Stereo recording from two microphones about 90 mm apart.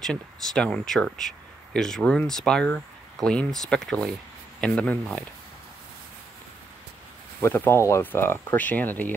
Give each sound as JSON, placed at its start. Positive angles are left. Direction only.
{"t": 0.0, "sound": "speech", "side_deg": 5}
{"t": 7.4, "sound": "speech", "side_deg": 25}